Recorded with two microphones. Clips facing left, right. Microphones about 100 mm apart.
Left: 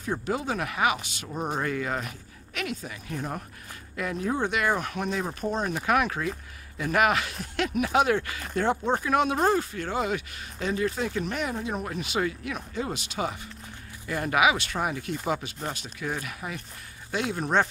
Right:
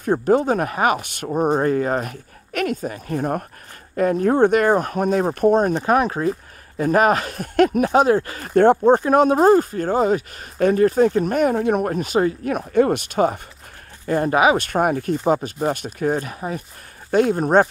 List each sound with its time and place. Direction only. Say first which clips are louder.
0.0 s speech: right 12 dB; 50° right (ahead or behind)
5.8 s speech: right 7 dB; 35° right (ahead or behind)
8.5 s speech: right 12 dB; 50° right (ahead or behind)
11.5 s speech: right 12 dB; 60° right (ahead or behind); by 12.5 s 40° right (ahead or behind)
12.5 s speech: right 15 dB; 55° right (ahead or behind)
14.0 s speech: right 7 dB; 35° right (ahead or behind)